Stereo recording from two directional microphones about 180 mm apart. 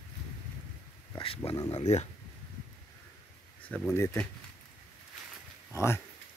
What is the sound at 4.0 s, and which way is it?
Speech, 15° left (ahead or behind).